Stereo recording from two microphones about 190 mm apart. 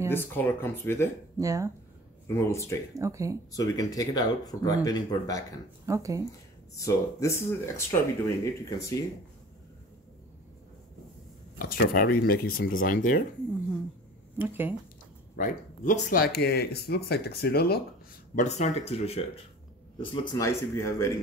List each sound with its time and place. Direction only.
0.1 s speech: 10° left (ahead or behind)
1.4 s speech: 15° right (ahead or behind)
2.2 s speech: 15° left (ahead or behind)
2.9 s speech: 15° right (ahead or behind)
3.5 s speech: 20° left (ahead or behind)
5.9 s speech: 15° right (ahead or behind)
6.7 s speech: 15° left (ahead or behind)
11.5 s speech: 50° left (ahead or behind)
14.4 s speech: 10° right (ahead or behind)
15.3 s speech: 45° left (ahead or behind)
18.3 s speech: 40° left (ahead or behind)
20.4 s speech: 15° left (ahead or behind)